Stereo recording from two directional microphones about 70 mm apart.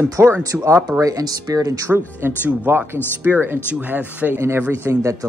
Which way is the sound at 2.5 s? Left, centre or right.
Right.